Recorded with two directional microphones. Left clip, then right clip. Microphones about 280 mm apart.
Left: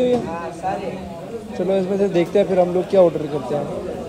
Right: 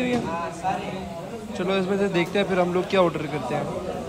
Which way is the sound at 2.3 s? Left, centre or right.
Right.